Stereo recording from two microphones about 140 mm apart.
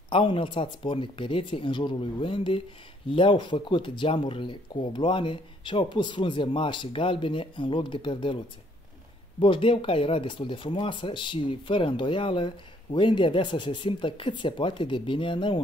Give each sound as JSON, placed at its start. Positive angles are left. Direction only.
{"t": 0.1, "sound": "speech", "side_deg": 35}
{"t": 9.4, "sound": "speech", "side_deg": 40}